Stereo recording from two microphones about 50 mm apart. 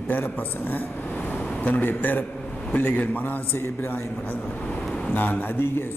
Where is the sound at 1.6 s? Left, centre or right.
Left.